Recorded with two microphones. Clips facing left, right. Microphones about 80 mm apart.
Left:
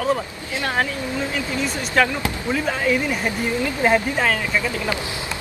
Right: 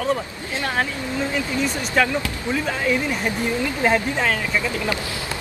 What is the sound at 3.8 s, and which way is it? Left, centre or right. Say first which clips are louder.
Speech: left 2 dB; centre.